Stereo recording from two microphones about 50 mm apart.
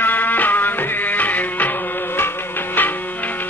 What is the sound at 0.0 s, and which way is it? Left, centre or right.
Music, left.